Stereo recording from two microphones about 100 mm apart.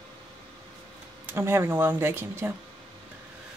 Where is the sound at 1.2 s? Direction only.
25° right (ahead or behind).